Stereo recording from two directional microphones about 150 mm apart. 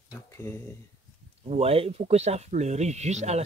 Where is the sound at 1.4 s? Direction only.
40° right (ahead or behind).